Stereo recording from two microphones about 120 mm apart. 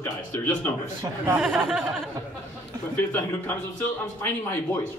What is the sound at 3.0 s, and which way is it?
A man's voice, 15° left (ahead or behind).